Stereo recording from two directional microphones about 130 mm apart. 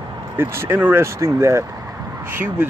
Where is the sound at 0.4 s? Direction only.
15° right (ahead or behind).